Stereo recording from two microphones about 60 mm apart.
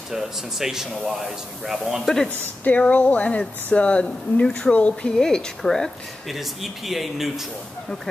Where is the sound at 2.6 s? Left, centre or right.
Left.